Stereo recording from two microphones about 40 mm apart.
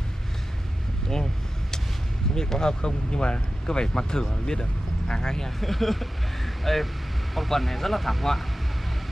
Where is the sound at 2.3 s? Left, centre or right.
Centre.